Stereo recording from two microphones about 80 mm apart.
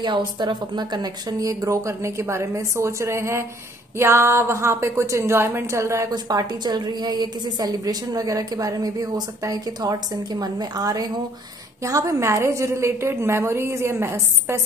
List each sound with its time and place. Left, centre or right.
0.0 s a woman's voice: right
6.0 s a woman's voice: right
11.8 s a woman's voice: right